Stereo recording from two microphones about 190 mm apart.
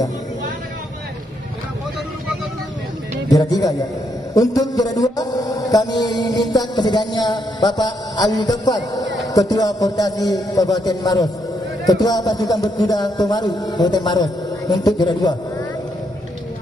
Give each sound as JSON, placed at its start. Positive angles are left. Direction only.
{"t": 3.3, "sound": "mantra", "side_deg": 20}